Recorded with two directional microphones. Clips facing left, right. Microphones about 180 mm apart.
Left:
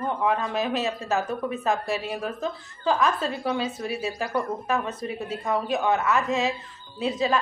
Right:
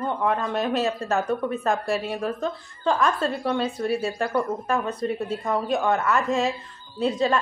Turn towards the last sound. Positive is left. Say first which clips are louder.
# right 3 dB
turn(degrees=0)  # may be behind; listen again after turning